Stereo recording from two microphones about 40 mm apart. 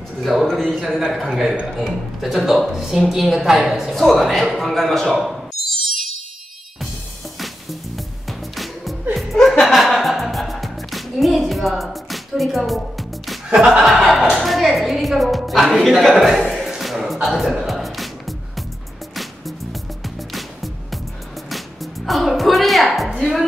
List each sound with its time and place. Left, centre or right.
0.2 s a woman's voice: centre
0.7 s a woman's voice: centre
3.9 s a woman's voice: centre
5.1 s a sound: centre
8.3 s music: centre
13.5 s chuckle: right
13.7 s a woman's voice: centre
16.6 s music: centre
17.1 s speech: centre
17.6 s music: centre